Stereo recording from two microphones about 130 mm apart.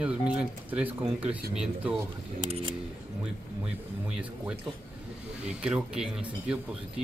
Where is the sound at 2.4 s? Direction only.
45° right (ahead or behind).